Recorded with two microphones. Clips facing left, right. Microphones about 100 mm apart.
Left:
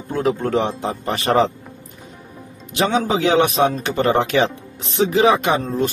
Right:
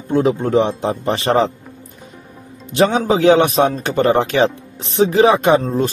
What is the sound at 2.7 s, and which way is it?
A man's voice, 35° right (ahead or behind).